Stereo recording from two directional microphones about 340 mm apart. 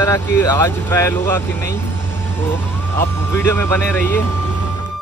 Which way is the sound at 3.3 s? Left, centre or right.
Centre.